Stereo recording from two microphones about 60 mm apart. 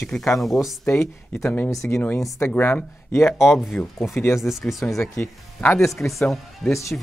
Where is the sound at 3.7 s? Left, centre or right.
Left.